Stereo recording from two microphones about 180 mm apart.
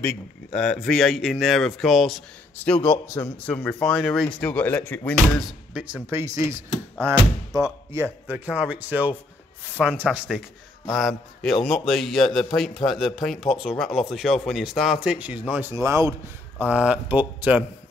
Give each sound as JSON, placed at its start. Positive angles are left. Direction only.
{"t": 0.5, "sound": "speech", "side_deg": 5}
{"t": 2.5, "sound": "a man's voice", "side_deg": 10}
{"t": 6.0, "sound": "speech", "side_deg": -15}